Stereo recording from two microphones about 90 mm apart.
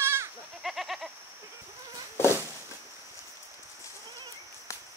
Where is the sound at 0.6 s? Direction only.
5° right (ahead or behind).